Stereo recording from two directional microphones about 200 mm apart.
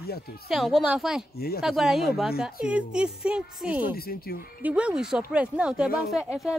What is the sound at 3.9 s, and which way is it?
Speech, 50° left (ahead or behind).